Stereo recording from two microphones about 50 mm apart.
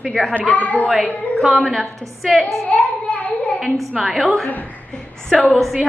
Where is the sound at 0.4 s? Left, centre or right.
Left.